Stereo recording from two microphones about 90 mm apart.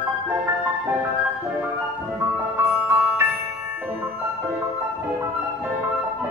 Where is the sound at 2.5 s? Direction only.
25° right (ahead or behind).